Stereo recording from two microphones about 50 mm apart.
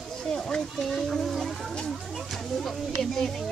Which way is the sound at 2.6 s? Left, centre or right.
Centre.